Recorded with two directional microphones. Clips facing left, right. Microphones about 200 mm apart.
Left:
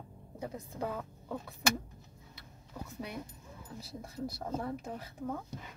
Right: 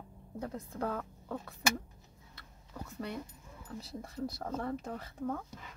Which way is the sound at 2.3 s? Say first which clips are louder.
Left 1 dB; 10° left (ahead or behind).